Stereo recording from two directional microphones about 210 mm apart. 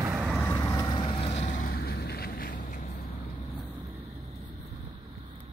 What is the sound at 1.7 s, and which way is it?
Vehicle, 50° left (ahead or behind).